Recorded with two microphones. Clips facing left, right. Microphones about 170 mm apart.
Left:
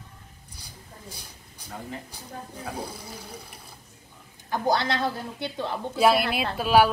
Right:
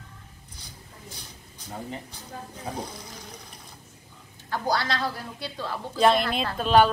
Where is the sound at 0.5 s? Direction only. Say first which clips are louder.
Left 2 dB; 10° left (ahead or behind).